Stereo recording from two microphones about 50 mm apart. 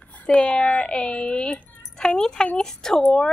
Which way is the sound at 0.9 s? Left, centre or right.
Centre.